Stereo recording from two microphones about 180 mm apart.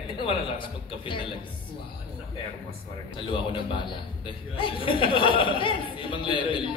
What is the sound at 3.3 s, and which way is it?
A man's voice, 25° left (ahead or behind).